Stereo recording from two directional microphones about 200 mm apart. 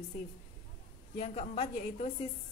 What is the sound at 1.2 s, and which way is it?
Speech, 35° left (ahead or behind).